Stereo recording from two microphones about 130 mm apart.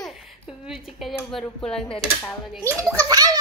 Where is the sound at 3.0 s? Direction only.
30° right (ahead or behind).